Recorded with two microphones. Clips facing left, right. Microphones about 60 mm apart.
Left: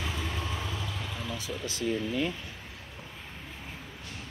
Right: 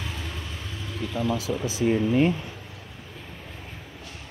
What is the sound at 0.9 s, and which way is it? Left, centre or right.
Speech, centre.